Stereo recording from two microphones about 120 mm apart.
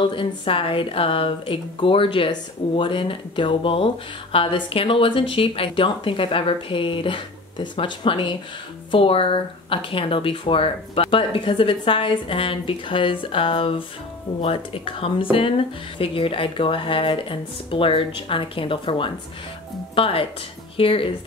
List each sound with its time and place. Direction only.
0.0 s speech: 45° left (ahead or behind)